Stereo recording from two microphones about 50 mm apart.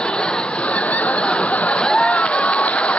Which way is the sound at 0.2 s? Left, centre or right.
Centre.